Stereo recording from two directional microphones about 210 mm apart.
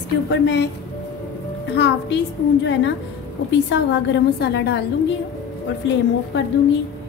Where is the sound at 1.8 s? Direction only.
55° left (ahead or behind).